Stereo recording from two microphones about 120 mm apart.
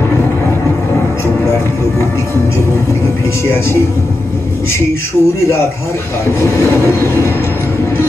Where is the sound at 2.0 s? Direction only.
20° left (ahead or behind).